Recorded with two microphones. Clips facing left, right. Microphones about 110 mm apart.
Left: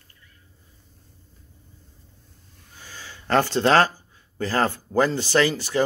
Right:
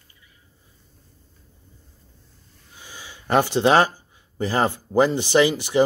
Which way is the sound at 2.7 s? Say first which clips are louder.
Even; 15° right (ahead or behind).